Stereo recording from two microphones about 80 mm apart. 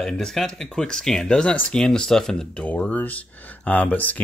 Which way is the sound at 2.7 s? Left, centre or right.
Centre.